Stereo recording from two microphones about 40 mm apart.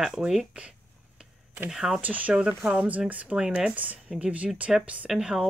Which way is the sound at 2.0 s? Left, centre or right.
Right.